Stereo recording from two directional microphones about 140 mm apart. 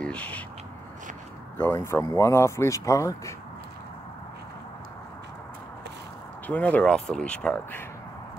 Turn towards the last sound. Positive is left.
turn(degrees=10)  # may be behind; listen again after turning